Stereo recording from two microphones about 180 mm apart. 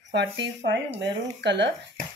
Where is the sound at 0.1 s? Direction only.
70° right (ahead or behind).